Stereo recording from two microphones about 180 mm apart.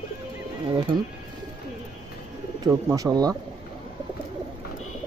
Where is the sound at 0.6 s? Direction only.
25° right (ahead or behind).